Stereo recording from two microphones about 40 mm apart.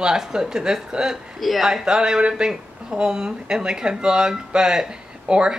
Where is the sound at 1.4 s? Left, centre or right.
Centre.